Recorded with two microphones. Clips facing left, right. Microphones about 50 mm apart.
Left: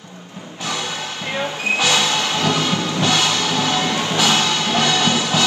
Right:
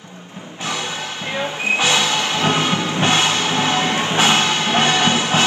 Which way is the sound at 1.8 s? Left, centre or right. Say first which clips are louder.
Even; right.